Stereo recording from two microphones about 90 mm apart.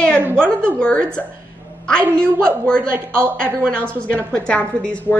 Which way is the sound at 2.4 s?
10° left (ahead or behind).